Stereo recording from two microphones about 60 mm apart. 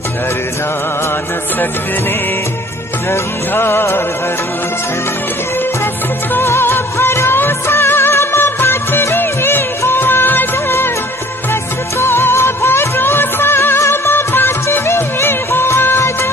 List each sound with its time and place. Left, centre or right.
3.1 s music: left
6.3 s music of bollywood: left
12.0 s music: left